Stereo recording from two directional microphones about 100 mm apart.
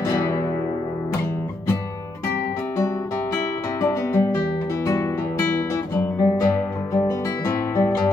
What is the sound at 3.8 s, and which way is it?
Music, 25° left (ahead or behind).